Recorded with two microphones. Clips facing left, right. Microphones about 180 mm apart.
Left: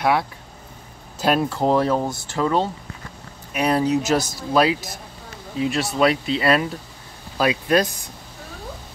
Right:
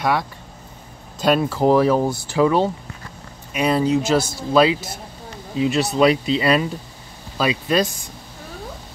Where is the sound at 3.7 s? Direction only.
5° left (ahead or behind).